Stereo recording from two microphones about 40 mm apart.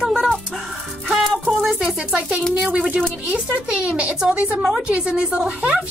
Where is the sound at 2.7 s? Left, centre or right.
Right.